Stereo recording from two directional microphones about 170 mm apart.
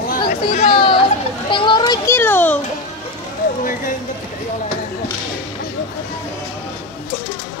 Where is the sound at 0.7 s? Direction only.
30° left (ahead or behind).